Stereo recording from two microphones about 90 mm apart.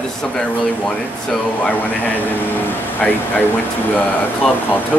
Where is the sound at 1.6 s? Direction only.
20° left (ahead or behind).